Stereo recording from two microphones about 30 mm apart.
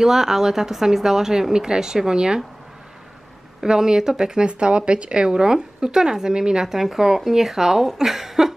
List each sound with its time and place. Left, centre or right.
0.0 s speech: centre
3.6 s speech: right
4.5 s speech: right
6.7 s speech: centre